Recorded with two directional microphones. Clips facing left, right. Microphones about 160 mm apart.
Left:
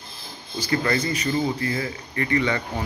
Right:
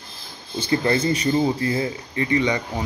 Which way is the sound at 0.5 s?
25° right (ahead or behind).